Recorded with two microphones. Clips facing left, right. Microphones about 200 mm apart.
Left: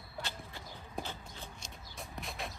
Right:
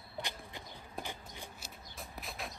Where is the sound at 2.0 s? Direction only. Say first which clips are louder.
Left 2 dB; centre (ahead or behind).